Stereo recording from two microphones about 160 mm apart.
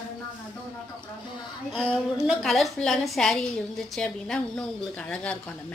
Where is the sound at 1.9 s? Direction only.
Centre (ahead or behind).